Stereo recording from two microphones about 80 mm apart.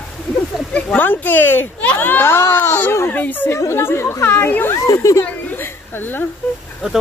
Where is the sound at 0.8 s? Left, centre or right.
Centre.